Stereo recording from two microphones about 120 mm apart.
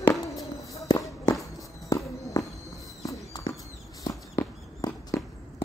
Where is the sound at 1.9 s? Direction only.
25° left (ahead or behind).